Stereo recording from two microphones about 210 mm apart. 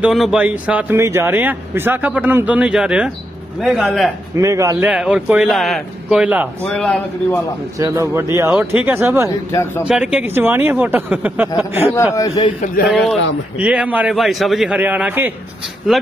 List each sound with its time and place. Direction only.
0.0 s a man's voice: centre (ahead or behind)
4.4 s a man's voice: 15° right (ahead or behind); by 7.3 s 5° left (ahead or behind)
7.8 s speech: 15° right (ahead or behind)
9.5 s speech: 10° left (ahead or behind)
9.8 s speech: 5° right (ahead or behind)
11.9 s speech: 15° left (ahead or behind)
12.6 s a man's voice: 45° left (ahead or behind)
12.9 s a man's voice: centre (ahead or behind)